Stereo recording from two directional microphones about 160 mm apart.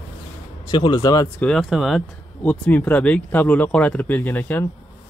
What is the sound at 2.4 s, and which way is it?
Speech, 10° left (ahead or behind).